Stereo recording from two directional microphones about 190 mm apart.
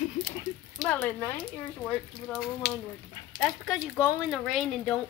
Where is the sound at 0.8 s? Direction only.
10° left (ahead or behind).